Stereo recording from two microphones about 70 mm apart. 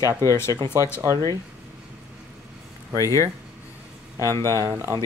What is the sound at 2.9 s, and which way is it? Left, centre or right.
Speech, left.